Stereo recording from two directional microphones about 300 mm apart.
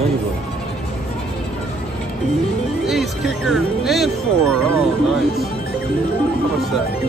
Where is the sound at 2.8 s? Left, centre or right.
Centre.